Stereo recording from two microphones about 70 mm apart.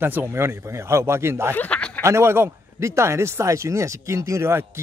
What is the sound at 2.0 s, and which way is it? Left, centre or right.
Speech, right.